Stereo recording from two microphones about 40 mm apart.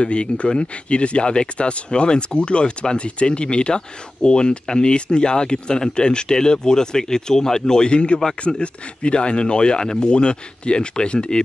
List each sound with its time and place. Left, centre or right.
0.0 s speech: left